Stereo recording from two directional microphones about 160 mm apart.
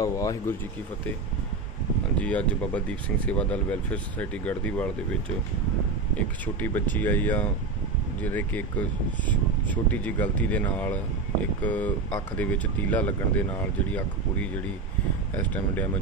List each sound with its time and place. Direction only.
0.0 s speech: 20° left (ahead or behind)
2.1 s speech: 10° left (ahead or behind)
6.1 s speech: 10° left (ahead or behind)